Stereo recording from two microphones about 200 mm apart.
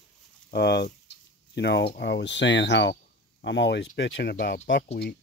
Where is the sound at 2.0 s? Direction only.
60° left (ahead or behind).